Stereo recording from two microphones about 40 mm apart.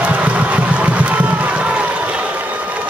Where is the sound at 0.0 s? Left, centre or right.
Right.